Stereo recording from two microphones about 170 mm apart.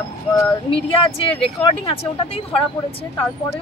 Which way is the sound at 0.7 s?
30° left (ahead or behind).